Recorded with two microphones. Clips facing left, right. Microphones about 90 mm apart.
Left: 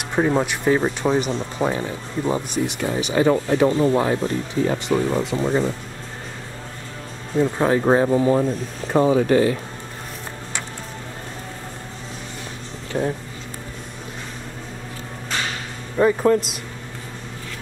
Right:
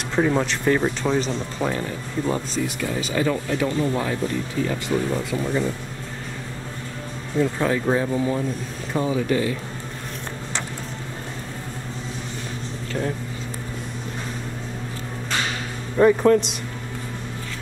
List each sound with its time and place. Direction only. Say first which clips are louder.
0.1 s speech: left 1 dB; 15° left (ahead or behind)
3.3 s speech: left 6 dB; 30° left (ahead or behind)
7.3 s speech: left 3 dB; 25° left (ahead or behind); by 9.6 s 45° left (ahead or behind)
12.9 s speech: left 4 dB; 15° left (ahead or behind)
16.0 s speech: right 1 dB; centre (ahead or behind)